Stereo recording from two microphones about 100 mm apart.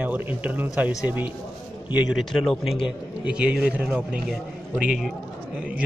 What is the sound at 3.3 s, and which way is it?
A man's voice, 10° right (ahead or behind).